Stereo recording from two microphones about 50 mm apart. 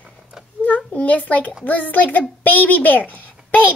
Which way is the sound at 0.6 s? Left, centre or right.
Left.